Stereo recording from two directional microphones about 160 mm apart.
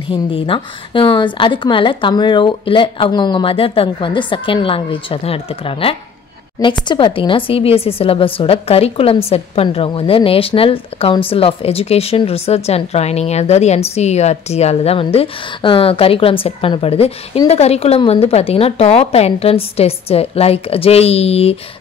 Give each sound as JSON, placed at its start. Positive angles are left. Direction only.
{"t": 0.1, "sound": "a woman's voice", "side_deg": 35}